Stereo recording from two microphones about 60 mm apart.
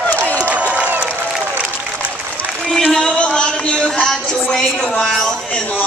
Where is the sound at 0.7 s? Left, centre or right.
Right.